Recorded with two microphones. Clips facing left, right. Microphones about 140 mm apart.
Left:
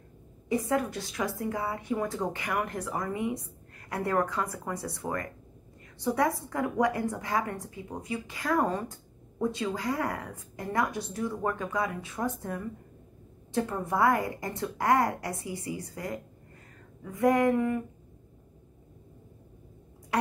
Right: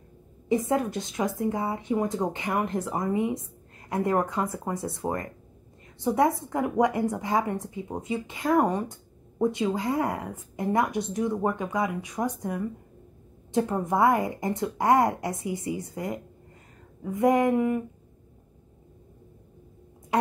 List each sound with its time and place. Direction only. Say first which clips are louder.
0.5 s a woman's voice: right 3 dB; 20° right (ahead or behind)